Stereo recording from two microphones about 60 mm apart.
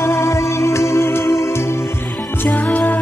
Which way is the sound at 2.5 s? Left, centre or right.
Left.